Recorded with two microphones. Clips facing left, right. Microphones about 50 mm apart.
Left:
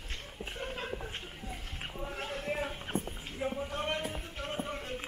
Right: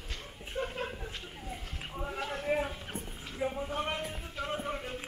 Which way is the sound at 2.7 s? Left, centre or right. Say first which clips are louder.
Left 5 dB; left.